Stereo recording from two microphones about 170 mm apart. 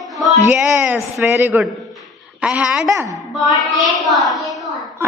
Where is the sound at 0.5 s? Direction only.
10° right (ahead or behind).